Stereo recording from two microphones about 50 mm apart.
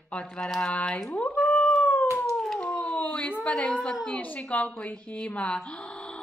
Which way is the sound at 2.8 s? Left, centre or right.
Left.